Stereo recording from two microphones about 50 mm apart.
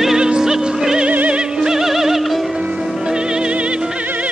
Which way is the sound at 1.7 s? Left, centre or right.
Centre.